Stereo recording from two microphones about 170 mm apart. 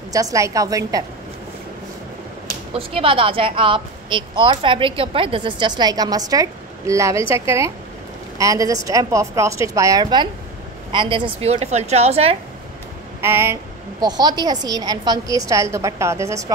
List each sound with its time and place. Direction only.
0.1 s a woman's voice: 20° right (ahead or behind)
2.7 s a woman's voice: 35° right (ahead or behind)
13.2 s a woman's voice: 15° right (ahead or behind)